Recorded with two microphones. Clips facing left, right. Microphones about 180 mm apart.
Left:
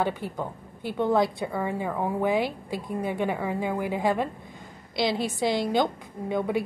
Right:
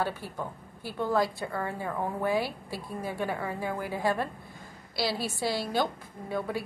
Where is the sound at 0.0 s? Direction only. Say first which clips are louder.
Left 4 dB; 20° left (ahead or behind).